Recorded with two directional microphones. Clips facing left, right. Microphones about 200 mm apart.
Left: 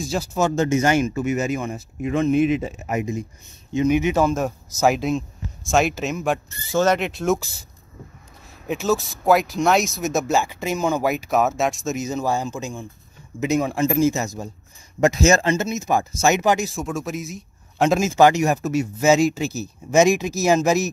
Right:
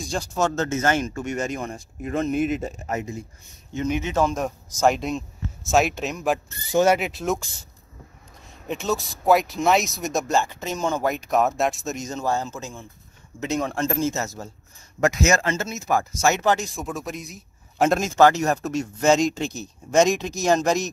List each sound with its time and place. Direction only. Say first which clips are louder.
0.0 s a man's voice: left 2 dB; 5° left (ahead or behind)
8.6 s a man's voice: left 4 dB; 5° left (ahead or behind)
15.0 s speech: left 4 dB; 25° left (ahead or behind)
15.4 s speech: left 5 dB; 15° left (ahead or behind)
16.3 s a man's voice: left 2 dB; 10° left (ahead or behind)